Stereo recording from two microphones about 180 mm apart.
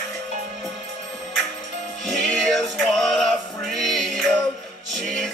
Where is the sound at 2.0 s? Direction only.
Centre (ahead or behind).